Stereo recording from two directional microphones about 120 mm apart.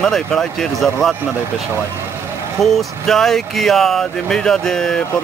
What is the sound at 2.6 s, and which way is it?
Speech, 5° left (ahead or behind).